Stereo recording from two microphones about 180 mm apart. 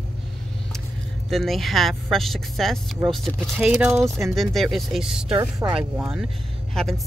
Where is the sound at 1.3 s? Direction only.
Centre (ahead or behind).